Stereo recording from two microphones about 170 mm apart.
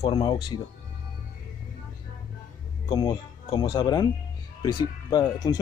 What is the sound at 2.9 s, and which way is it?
Speech, 30° left (ahead or behind).